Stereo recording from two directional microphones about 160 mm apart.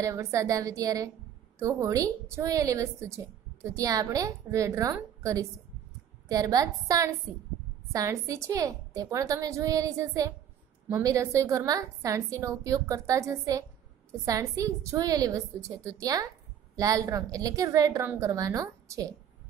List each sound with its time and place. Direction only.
0.0 s a woman's voice: 20° right (ahead or behind)